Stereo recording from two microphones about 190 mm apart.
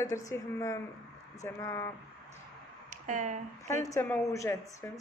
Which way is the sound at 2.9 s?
40° right (ahead or behind).